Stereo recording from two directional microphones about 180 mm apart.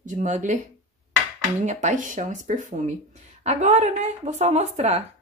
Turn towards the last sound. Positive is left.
turn(degrees=-35)  # may be behind; listen again after turning